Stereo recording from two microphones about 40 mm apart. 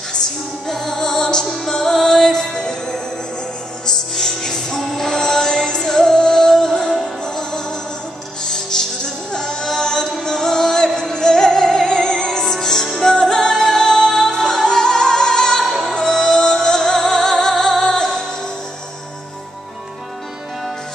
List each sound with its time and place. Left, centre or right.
0.7 s music: centre